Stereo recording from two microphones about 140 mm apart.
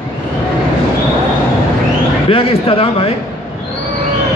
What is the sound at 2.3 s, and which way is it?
Speech, 40° left (ahead or behind).